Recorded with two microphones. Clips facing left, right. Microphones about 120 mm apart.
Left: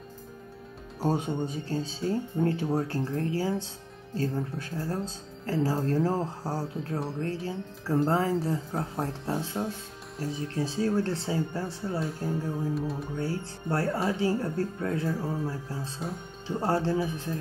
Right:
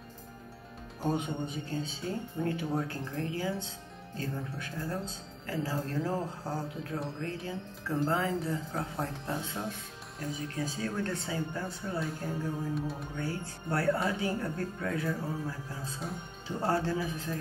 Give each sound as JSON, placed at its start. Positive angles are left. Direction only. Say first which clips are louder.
{"t": 1.0, "sound": "speech", "louder": "left 4 dB", "side_deg": 35}
{"t": 12.0, "sound": "music", "louder": "left 3 dB", "side_deg": 0}
{"t": 13.2, "sound": "speech", "louder": "left 2 dB", "side_deg": 30}